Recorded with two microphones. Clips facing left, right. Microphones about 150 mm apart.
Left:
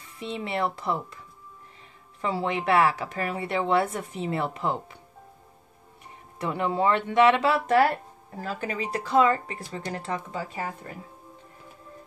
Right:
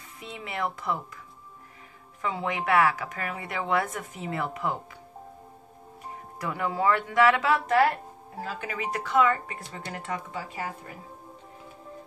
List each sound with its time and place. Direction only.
0.2 s a woman's voice: 30° left (ahead or behind)
2.2 s a woman's voice: 30° left (ahead or behind)
6.3 s a woman's voice: 25° left (ahead or behind)